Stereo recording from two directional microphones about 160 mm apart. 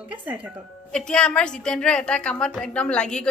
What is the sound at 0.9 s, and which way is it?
A woman's voice, 5° left (ahead or behind).